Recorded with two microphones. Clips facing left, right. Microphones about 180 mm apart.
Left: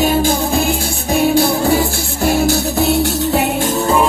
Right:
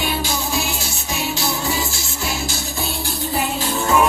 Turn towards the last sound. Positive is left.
turn(degrees=70)  # may be behind; listen again after turning